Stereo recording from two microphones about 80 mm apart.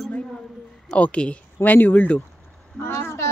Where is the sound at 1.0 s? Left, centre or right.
Centre.